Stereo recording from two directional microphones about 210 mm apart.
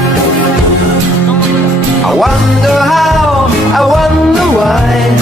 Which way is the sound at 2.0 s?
Centre (ahead or behind).